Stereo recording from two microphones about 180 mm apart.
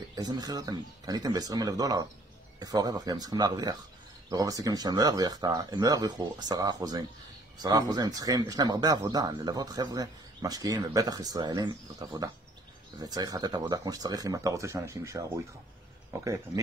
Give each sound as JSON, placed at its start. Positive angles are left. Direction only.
{"t": 0.1, "sound": "speech", "side_deg": -20}